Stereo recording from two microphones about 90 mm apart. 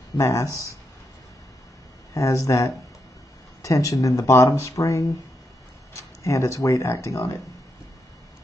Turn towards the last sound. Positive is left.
turn(degrees=35)  # may be behind; listen again after turning